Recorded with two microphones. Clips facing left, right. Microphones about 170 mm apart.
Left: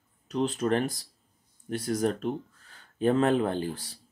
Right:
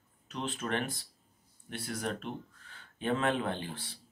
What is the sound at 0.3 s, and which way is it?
Speech, 40° left (ahead or behind).